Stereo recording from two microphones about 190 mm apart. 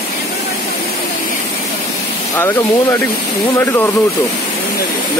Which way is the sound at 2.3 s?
15° left (ahead or behind).